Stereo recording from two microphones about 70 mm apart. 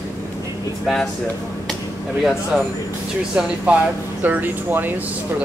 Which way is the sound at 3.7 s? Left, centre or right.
Centre.